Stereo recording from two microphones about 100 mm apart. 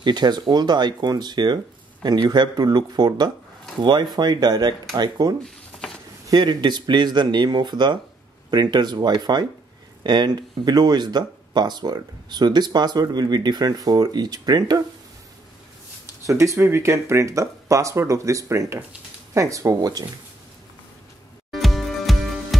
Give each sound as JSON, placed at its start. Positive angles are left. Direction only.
{"t": 0.0, "sound": "speech", "side_deg": -45}
{"t": 5.4, "sound": "a sound", "side_deg": 5}
{"t": 6.2, "sound": "speech", "side_deg": -40}
{"t": 16.3, "sound": "speech", "side_deg": -30}
{"t": 21.5, "sound": "music", "side_deg": 0}